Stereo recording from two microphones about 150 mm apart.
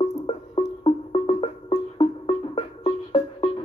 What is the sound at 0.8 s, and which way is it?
Music, 35° left (ahead or behind).